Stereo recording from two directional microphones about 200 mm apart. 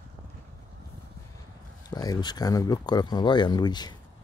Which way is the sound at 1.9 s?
20° left (ahead or behind).